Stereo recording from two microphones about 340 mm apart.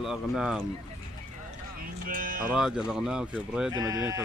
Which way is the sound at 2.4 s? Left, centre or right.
Centre.